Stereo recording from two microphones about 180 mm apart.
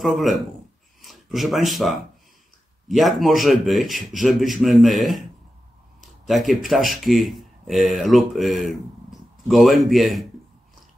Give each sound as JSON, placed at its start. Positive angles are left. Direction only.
{"t": 0.0, "sound": "speech", "side_deg": 0}
{"t": 6.2, "sound": "speech", "side_deg": 0}